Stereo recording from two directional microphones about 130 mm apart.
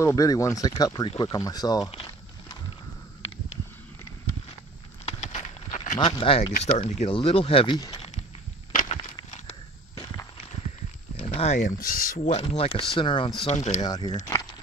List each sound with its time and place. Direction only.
0.0 s speech: 25° left (ahead or behind)
5.0 s a sound: 65° left (ahead or behind)
5.9 s speech: 45° left (ahead or behind)
6.5 s speech: 70° left (ahead or behind)
7.1 s speech: 45° left (ahead or behind)
7.9 s a sound: 55° left (ahead or behind)
9.0 s walk: 70° left (ahead or behind)
11.1 s speech: 55° left (ahead or behind); by 12.3 s 90° left
12.4 s speech: 55° left (ahead or behind)
13.4 s speech: 55° left (ahead or behind)
13.8 s speech: 30° left (ahead or behind)